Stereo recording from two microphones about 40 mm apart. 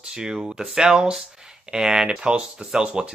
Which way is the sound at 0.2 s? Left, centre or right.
Centre.